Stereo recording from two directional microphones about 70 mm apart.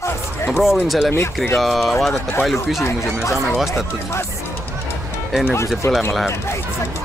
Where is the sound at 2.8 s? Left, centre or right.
Left.